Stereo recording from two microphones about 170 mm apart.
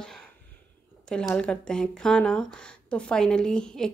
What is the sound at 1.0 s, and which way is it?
Speech, 5° left (ahead or behind).